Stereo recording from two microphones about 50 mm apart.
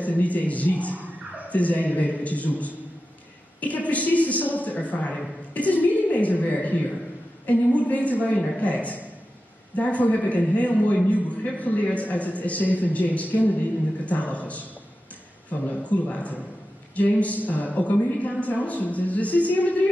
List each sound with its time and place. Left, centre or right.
0.0 s a man's voice: left
15.6 s a man's voice: left